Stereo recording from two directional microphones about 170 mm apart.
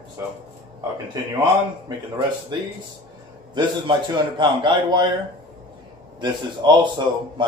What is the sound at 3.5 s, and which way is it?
A man's voice, 25° right (ahead or behind).